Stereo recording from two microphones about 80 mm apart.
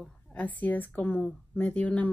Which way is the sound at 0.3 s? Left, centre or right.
Centre.